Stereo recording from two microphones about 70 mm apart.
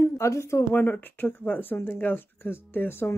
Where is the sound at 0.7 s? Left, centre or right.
Left.